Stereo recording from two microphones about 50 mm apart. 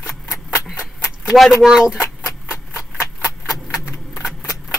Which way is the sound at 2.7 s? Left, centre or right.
Left.